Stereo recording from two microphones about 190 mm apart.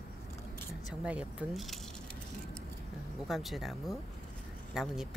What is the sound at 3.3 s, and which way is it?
Speech, centre (ahead or behind).